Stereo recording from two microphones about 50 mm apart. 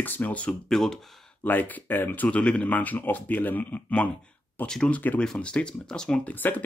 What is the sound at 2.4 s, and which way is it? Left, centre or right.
Speech, left.